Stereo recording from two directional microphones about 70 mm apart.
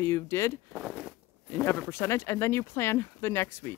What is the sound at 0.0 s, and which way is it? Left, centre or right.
Speech, left.